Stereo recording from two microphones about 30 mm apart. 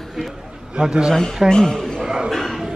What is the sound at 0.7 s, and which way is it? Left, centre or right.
Speech, right.